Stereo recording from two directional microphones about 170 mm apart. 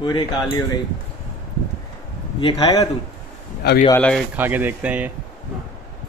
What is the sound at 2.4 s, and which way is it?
Speech, 30° left (ahead or behind).